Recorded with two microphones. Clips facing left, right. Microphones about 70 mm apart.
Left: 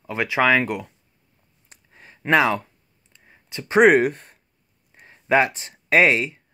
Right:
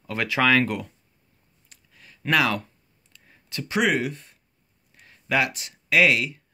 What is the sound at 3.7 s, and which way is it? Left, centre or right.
Speech, left.